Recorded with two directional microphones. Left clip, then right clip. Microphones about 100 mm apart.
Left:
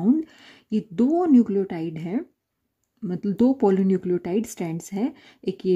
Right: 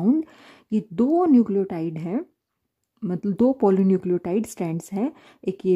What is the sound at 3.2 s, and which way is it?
Speech, 35° right (ahead or behind).